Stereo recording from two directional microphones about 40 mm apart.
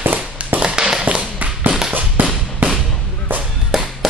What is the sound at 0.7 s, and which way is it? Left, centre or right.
Tap, centre.